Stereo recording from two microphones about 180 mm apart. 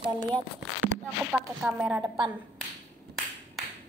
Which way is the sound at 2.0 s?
25° right (ahead or behind).